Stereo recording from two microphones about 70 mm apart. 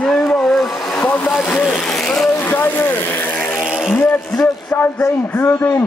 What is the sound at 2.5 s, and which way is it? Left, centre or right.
Speech, left.